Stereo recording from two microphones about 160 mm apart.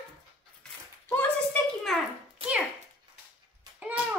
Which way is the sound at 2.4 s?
40° right (ahead or behind).